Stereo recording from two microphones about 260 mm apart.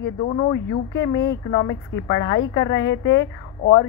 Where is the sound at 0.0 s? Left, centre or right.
Left.